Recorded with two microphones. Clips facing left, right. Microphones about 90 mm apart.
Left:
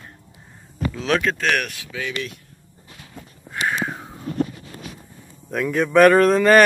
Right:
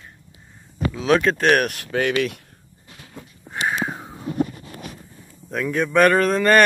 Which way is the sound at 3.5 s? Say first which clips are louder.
Even; 20° right (ahead or behind).